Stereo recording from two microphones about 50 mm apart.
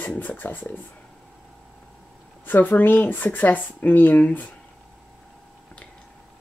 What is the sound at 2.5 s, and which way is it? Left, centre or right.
Speech, left.